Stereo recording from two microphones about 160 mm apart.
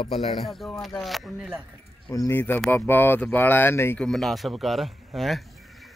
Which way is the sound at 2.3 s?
15° left (ahead or behind).